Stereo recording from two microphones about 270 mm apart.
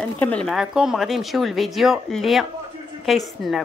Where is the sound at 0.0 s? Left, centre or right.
Centre.